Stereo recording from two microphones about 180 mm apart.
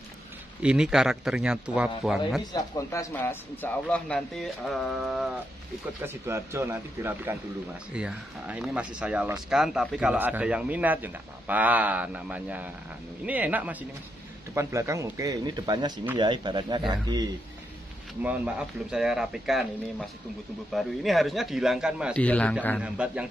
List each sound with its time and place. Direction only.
0.6 s speech: 5° right (ahead or behind)
2.5 s speech: 20° left (ahead or behind); by 5.4 s centre (ahead or behind)
6.0 s speech: 15° right (ahead or behind)
18.2 s speech: 5° right (ahead or behind)
22.1 s speech: 5° left (ahead or behind)
22.8 s speech: 5° right (ahead or behind)